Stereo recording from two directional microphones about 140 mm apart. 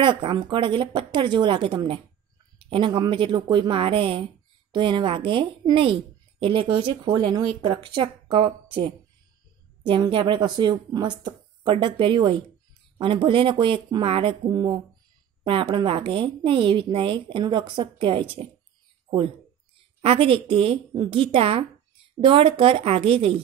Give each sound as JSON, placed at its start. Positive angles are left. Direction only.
{"t": 0.0, "sound": "a woman's voice", "side_deg": -35}